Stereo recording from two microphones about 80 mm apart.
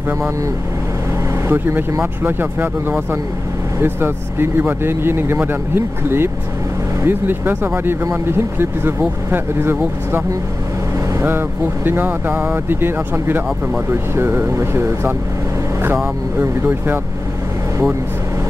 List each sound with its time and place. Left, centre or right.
1.5 s speech: right
3.8 s speech: right
11.2 s speech: right
16.3 s speech: right